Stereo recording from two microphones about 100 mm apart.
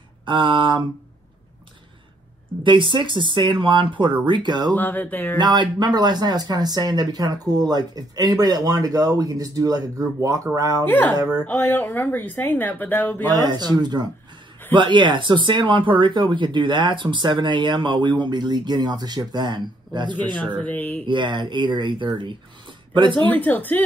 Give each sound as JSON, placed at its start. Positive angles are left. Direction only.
{"t": 0.2, "sound": "a sound", "side_deg": -55}
{"t": 2.6, "sound": "speech", "side_deg": -55}
{"t": 4.7, "sound": "speech", "side_deg": 20}
{"t": 5.4, "sound": "speech", "side_deg": -45}
{"t": 10.8, "sound": "speech", "side_deg": 20}
{"t": 13.3, "sound": "speech", "side_deg": -45}
{"t": 14.8, "sound": "speech", "side_deg": -55}
{"t": 20.2, "sound": "speech", "side_deg": 15}
{"t": 21.1, "sound": "speech", "side_deg": -50}
{"t": 23.2, "sound": "speech", "side_deg": 15}